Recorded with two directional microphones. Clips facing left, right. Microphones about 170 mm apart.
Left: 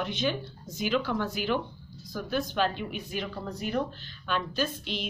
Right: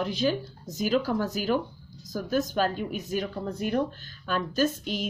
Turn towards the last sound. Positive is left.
turn(degrees=-45)  # may be behind; listen again after turning